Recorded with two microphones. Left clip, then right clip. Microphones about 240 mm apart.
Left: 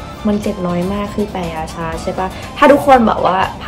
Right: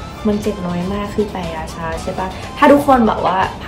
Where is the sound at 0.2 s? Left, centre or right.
Left.